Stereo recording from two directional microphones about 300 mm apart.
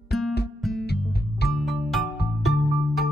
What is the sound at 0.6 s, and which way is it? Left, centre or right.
Music, centre.